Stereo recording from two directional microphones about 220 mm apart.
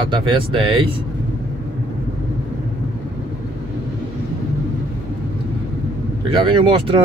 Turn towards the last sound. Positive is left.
turn(degrees=-20)  # may be behind; listen again after turning